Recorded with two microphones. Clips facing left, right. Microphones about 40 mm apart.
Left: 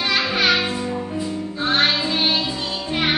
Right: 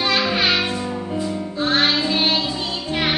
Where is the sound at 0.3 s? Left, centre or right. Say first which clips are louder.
Even; centre.